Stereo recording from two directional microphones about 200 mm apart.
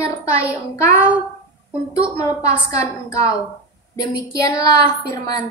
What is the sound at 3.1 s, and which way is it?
A woman's voice, 15° left (ahead or behind).